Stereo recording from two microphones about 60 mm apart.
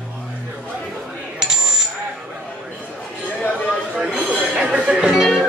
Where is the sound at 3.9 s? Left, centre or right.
Centre.